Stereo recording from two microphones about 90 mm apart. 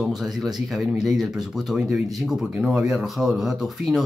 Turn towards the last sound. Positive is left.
turn(degrees=-5)  # may be behind; listen again after turning